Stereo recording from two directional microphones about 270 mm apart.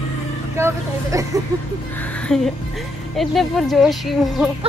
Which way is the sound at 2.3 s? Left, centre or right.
Centre.